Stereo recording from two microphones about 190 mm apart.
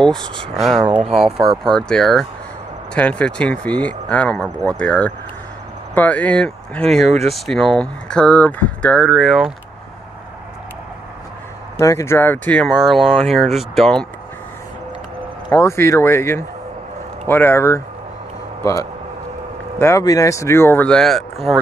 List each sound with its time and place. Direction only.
0.0 s speech: 5° left (ahead or behind)
11.8 s speech: 15° left (ahead or behind)
15.5 s speech: 15° left (ahead or behind)